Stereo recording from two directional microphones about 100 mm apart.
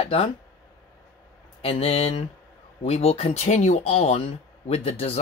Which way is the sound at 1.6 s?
85° left.